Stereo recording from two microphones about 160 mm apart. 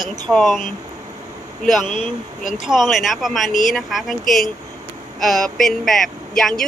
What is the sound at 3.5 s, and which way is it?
Speech, 55° left (ahead or behind).